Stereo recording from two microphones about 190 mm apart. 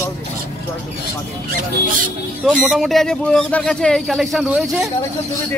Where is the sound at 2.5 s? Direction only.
5° right (ahead or behind).